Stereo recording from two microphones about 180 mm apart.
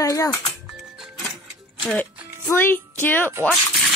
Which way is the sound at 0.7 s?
Centre (ahead or behind).